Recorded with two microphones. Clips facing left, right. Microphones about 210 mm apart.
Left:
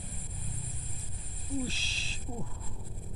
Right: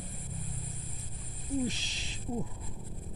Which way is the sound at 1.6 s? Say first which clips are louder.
Right 4 dB; 20° right (ahead or behind).